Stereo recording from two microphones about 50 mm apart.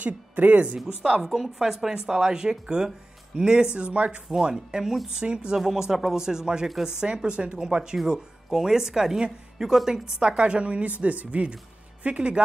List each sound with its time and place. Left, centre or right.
0.0 s speech: right
0.7 s a woman's voice: centre
4.3 s a woman's voice: centre
5.3 s a woman's voice: right
5.6 s a woman's voice: centre; by 12.4 s right